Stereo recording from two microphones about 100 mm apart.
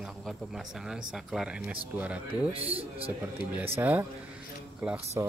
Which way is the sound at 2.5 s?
70° right (ahead or behind).